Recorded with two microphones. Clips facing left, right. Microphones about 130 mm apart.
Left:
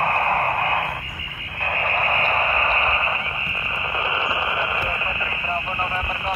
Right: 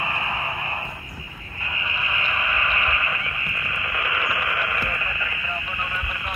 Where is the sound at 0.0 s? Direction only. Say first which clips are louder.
Left 8 dB; 55° left (ahead or behind).